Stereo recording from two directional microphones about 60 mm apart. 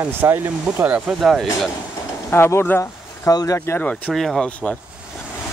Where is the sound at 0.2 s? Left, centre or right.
Right.